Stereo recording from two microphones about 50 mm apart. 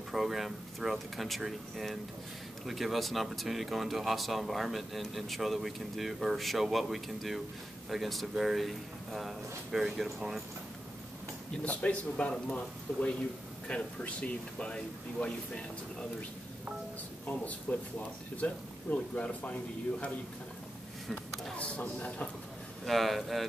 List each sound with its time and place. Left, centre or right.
0.1 s speech: centre
11.6 s speech: left
17.7 s speech: left
21.5 s speech: left
22.8 s speech: centre